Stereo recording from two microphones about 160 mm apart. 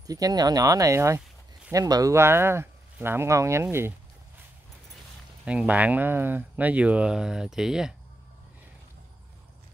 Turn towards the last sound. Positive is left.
turn(degrees=-5)  # may be behind; listen again after turning